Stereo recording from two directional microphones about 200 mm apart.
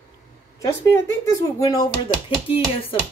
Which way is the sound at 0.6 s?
15° left (ahead or behind).